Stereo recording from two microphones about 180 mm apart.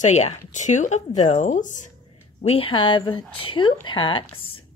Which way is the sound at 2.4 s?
35° left (ahead or behind).